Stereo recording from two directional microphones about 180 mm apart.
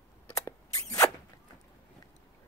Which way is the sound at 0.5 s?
20° left (ahead or behind).